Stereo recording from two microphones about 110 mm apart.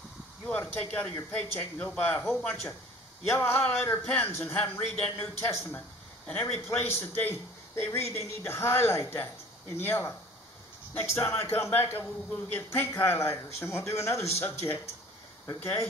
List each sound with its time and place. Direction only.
0.5 s speech: 10° left (ahead or behind)
2.3 s speech: 5° left (ahead or behind)
3.3 s speech: 20° left (ahead or behind)
6.2 s speech: 15° left (ahead or behind)